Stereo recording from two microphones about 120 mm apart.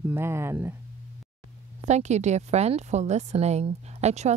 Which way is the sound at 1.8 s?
70° right (ahead or behind).